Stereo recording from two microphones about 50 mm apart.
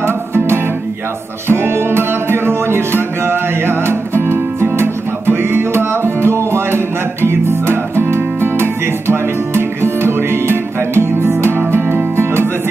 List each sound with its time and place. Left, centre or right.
0.0 s music: right